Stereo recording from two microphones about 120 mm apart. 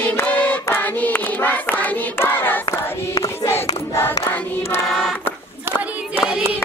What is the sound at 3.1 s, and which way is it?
Choir, 35° left (ahead or behind).